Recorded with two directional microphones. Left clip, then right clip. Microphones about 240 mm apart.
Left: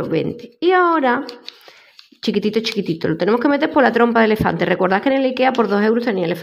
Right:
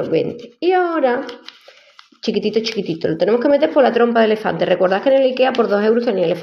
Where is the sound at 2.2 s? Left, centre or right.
Left.